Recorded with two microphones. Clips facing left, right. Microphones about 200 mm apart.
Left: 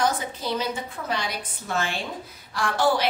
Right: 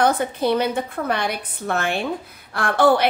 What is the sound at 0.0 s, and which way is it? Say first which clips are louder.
A woman's voice: right 7 dB; 60° right (ahead or behind).